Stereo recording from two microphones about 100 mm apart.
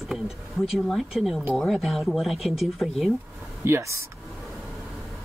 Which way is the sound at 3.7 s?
30° right (ahead or behind).